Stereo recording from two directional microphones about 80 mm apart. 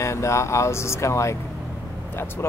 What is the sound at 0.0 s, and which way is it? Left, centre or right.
Speech, left.